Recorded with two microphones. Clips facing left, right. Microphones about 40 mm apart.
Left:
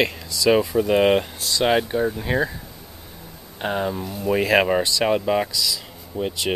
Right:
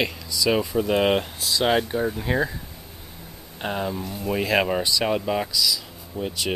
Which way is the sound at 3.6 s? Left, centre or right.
Centre.